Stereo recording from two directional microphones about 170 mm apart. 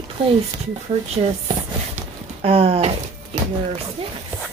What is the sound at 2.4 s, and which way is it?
Speech, 35° right (ahead or behind).